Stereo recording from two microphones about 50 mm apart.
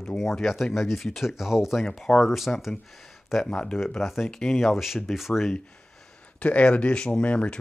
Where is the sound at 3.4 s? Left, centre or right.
Centre.